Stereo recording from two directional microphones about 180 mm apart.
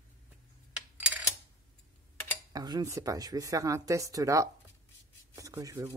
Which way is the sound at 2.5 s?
20° right (ahead or behind).